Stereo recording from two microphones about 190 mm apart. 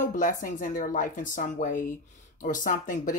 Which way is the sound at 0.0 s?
45° left (ahead or behind).